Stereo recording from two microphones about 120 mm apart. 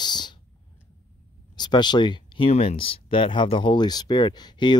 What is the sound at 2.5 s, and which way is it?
Speech, 55° left (ahead or behind).